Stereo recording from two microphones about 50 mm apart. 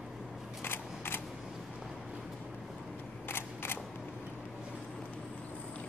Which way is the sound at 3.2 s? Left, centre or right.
Left.